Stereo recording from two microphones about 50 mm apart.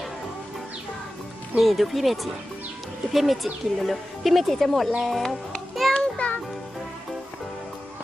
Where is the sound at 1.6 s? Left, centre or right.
Centre.